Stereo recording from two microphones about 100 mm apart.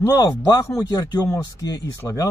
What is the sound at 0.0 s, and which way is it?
Speech, 40° left (ahead or behind).